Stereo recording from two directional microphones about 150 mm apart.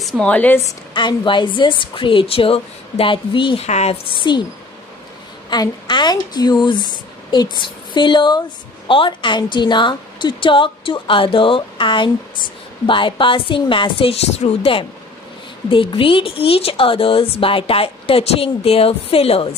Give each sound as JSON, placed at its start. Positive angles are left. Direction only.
{"t": 0.0, "sound": "speech", "side_deg": 10}
{"t": 0.9, "sound": "speech", "side_deg": 30}
{"t": 3.6, "sound": "speech", "side_deg": 45}
{"t": 4.2, "sound": "speech", "side_deg": 30}
{"t": 5.5, "sound": "speech", "side_deg": 30}